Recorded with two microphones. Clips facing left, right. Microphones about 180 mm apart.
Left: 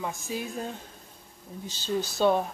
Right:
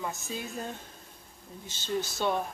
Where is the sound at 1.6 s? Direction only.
20° right (ahead or behind).